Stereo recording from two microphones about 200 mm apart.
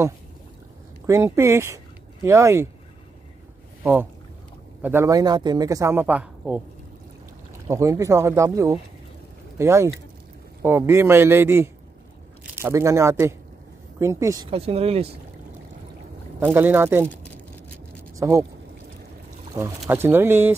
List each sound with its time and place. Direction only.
1.0 s speech: 15° right (ahead or behind)
3.8 s speech: 10° right (ahead or behind)
7.6 s speech: 15° right (ahead or behind)
14.5 s speech: 30° right (ahead or behind)
16.3 s speech: 10° right (ahead or behind)
18.1 s a sound: 15° right (ahead or behind)
19.6 s speech: 15° right (ahead or behind)